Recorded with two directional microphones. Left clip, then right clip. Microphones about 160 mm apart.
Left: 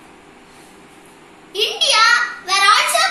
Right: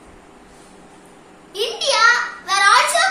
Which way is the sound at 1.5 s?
20° right (ahead or behind).